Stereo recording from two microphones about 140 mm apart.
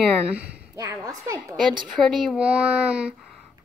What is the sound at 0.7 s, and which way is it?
Speech, 25° right (ahead or behind).